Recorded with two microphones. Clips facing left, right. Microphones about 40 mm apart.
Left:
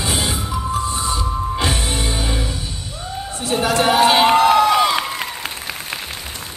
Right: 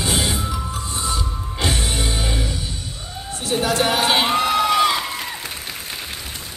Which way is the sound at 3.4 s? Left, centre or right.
Left.